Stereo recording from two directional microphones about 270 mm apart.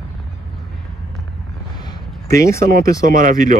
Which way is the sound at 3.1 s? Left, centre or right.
Right.